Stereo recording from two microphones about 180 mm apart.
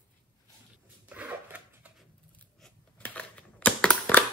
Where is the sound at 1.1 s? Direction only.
10° right (ahead or behind).